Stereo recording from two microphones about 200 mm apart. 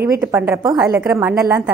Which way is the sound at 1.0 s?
5° right (ahead or behind).